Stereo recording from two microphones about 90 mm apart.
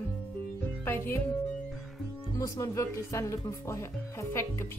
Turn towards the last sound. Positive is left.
turn(degrees=30)  # may be behind; listen again after turning